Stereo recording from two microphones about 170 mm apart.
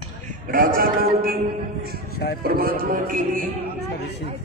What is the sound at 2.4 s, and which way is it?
Music, 60° right (ahead or behind).